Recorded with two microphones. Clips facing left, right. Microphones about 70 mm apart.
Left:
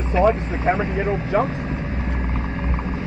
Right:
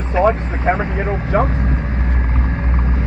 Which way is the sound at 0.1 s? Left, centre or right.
Right.